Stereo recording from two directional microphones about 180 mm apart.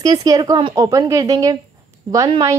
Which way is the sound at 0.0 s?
20° right (ahead or behind).